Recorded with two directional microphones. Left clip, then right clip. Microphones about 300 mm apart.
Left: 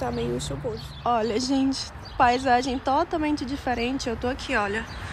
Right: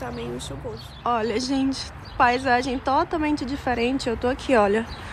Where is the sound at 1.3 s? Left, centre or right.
Centre.